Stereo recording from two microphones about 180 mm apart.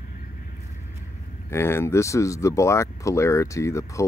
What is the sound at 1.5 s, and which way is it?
Speech, 15° left (ahead or behind).